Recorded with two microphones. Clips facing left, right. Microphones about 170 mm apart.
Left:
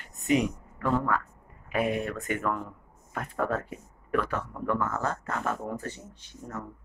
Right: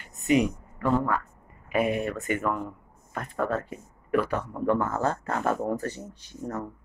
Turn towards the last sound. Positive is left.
turn(degrees=-40)  # may be behind; listen again after turning